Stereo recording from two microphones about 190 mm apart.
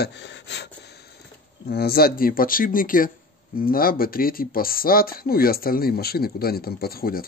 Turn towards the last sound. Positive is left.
turn(degrees=50)  # may be behind; listen again after turning